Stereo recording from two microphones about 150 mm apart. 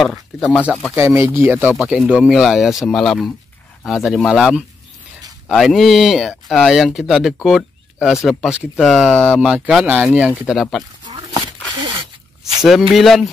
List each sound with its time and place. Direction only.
0.0 s speech: centre (ahead or behind)
0.9 s speech: 20° right (ahead or behind); by 9.5 s 5° left (ahead or behind)
9.5 s speech: 5° right (ahead or behind)
11.7 s a sound: 30° right (ahead or behind)
12.9 s speech: centre (ahead or behind)